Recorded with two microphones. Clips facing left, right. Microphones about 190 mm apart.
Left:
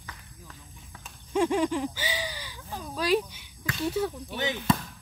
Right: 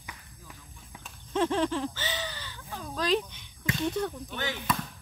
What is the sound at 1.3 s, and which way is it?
Speech, 10° left (ahead or behind).